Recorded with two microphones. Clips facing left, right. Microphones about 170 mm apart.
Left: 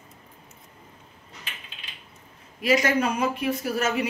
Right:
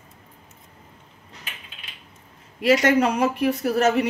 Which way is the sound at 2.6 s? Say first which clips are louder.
Right 4 dB; 75° right (ahead or behind).